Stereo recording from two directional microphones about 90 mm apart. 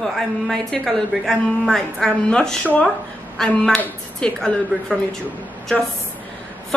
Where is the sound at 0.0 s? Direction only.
5° left (ahead or behind).